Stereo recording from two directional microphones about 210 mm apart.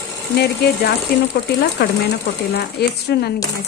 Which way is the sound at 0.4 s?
50° left (ahead or behind).